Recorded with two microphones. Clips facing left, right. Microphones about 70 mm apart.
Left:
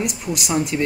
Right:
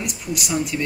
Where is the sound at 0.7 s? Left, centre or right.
Left.